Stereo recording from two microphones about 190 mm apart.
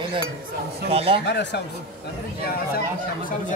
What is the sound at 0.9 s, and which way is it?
Speech, 30° right (ahead or behind).